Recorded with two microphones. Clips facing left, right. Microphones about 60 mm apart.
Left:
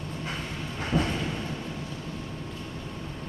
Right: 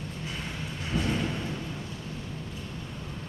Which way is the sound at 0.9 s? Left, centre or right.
Left.